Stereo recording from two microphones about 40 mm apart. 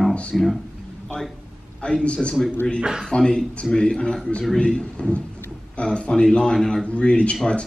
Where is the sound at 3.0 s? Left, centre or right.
Centre.